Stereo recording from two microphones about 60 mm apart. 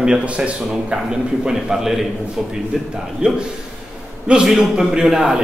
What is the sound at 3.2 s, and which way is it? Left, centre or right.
A man's voice, centre.